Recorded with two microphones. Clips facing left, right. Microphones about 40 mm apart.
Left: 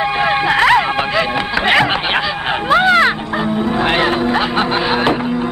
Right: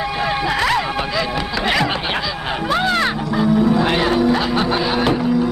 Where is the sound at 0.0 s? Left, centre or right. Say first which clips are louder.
Left 5 dB; left.